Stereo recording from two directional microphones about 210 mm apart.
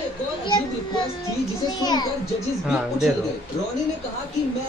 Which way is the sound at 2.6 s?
5° right (ahead or behind).